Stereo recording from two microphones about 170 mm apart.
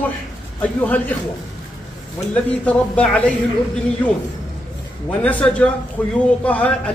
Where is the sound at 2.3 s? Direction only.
10° left (ahead or behind).